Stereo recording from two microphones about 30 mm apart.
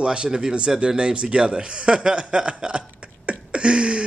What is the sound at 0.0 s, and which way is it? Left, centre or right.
Speech, right.